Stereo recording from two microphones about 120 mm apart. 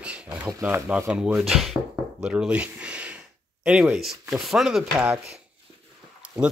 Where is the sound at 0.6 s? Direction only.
20° right (ahead or behind).